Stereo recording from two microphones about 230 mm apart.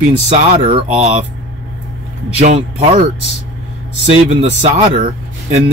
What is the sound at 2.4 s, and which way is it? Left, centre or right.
Speech, right.